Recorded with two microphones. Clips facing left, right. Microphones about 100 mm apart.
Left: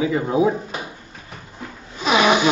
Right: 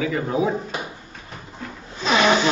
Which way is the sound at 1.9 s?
10° left (ahead or behind).